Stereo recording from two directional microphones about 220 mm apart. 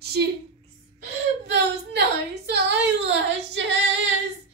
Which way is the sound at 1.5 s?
50° right (ahead or behind).